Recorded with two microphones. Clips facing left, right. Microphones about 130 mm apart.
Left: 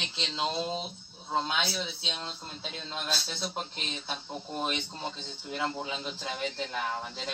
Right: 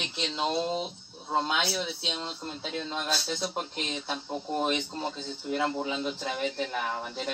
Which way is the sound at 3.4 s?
10° right (ahead or behind).